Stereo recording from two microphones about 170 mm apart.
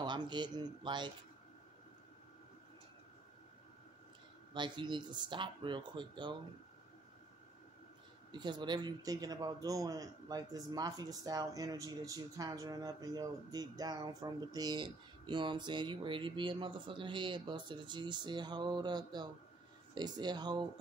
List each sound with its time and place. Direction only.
0.0 s a man's voice: 25° right (ahead or behind)
4.6 s a man's voice: 25° right (ahead or behind)
8.3 s a man's voice: 25° right (ahead or behind)